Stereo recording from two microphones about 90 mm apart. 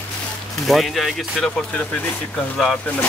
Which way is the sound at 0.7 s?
Centre (ahead or behind).